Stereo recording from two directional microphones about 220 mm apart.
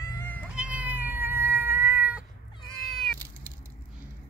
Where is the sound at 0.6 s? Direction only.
5° right (ahead or behind).